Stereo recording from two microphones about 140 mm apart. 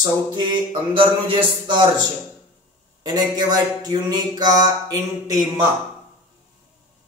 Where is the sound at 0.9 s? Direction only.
35° right (ahead or behind).